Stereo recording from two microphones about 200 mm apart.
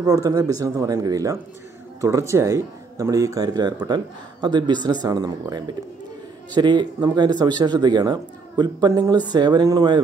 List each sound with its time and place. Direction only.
0.0 s speech: 20° right (ahead or behind)